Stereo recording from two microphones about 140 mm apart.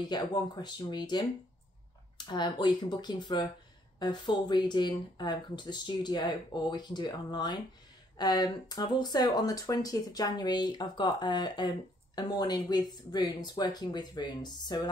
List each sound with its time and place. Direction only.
0.1 s speech: 30° left (ahead or behind)